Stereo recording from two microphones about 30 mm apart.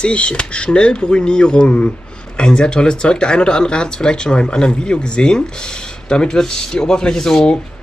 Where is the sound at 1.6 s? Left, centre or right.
Left.